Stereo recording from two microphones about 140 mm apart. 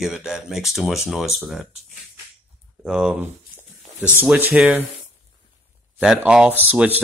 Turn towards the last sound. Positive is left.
turn(degrees=-10)  # may be behind; listen again after turning